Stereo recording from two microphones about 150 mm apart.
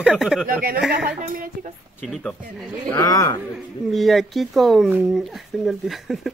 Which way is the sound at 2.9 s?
25° left (ahead or behind).